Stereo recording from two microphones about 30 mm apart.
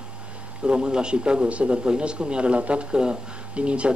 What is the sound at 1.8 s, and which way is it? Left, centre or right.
Speech, right.